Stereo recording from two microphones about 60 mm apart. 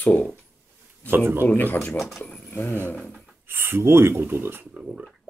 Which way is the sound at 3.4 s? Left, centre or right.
Right.